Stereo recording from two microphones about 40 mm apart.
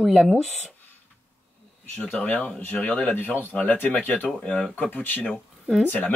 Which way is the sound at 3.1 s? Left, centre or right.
Left.